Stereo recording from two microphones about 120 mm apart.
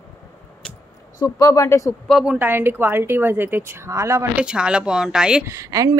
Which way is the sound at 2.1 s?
Centre (ahead or behind).